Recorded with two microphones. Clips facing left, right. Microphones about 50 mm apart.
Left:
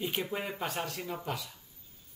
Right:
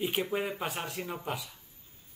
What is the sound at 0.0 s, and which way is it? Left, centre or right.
Speech, centre.